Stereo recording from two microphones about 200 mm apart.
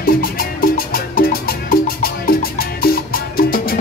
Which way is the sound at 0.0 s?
50° left (ahead or behind).